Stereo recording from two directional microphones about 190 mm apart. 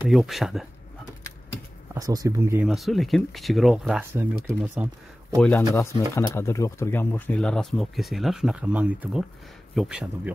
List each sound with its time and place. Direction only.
0.1 s speech: centre (ahead or behind)
2.0 s speech: 20° right (ahead or behind)
2.6 s speech: centre (ahead or behind)
5.7 s speech: 15° left (ahead or behind); by 10.3 s 5° right (ahead or behind)